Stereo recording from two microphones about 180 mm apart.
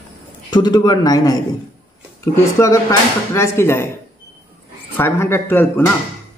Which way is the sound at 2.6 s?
15° left (ahead or behind).